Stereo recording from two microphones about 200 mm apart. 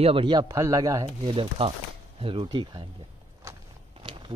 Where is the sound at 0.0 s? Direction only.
25° right (ahead or behind).